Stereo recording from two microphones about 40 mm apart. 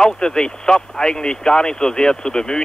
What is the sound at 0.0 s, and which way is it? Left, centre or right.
Speech, left.